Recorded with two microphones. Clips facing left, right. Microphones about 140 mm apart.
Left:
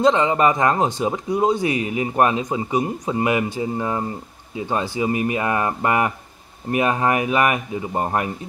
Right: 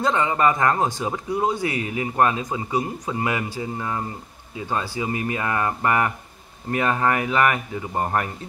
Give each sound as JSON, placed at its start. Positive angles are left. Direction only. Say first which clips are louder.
{"t": 0.0, "sound": "speech", "louder": "left 4 dB", "side_deg": 20}